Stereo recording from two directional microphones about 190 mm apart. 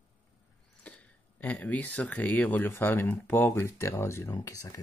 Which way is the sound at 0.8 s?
5° left (ahead or behind).